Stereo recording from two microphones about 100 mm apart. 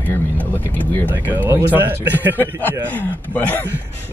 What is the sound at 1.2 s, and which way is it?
Speech, 20° right (ahead or behind).